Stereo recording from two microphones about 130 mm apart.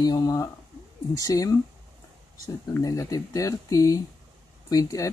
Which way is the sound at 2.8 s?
25° left (ahead or behind).